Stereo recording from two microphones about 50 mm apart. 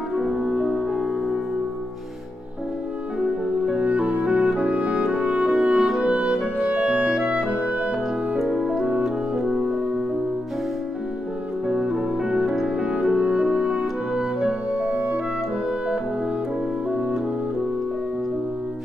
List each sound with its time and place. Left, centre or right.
0.1 s music: centre
3.6 s music: right
5.6 s music: centre
6.7 s clarinet: right
8.4 s music: centre
8.8 s music: centre
11.6 s music: centre